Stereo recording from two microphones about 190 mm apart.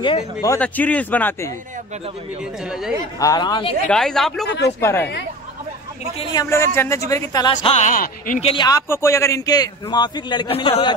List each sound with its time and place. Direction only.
0.0 s a man's voice: 20° left (ahead or behind)
0.6 s a man's voice: 10° left (ahead or behind)
3.2 s a man's voice: 20° left (ahead or behind)
3.9 s speech: centre (ahead or behind)
4.5 s speech: 65° left (ahead or behind)
4.7 s a man's voice: 10° left (ahead or behind)
6.1 s a man's voice: 25° left (ahead or behind)
6.4 s a man's voice: 15° left (ahead or behind)
7.5 s speech: 40° left (ahead or behind)
8.4 s a man's voice: 25° left (ahead or behind)